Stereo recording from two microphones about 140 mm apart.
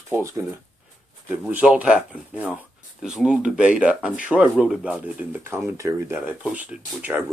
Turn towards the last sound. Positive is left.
turn(degrees=-10)  # may be behind; listen again after turning